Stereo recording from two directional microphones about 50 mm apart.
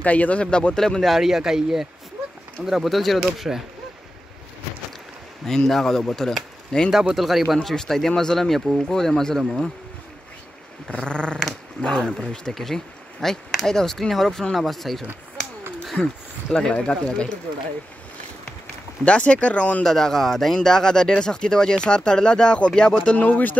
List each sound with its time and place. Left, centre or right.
0.0 s speech: left; by 1.1 s centre
1.1 s speech: centre
5.5 s speech: centre
7.2 s speech: centre
7.6 s speech: centre
10.9 s speech: centre
15.8 s a sound: centre
16.7 s speech: centre
19.0 s speech: left
19.8 s speech: centre
23.1 s speech: left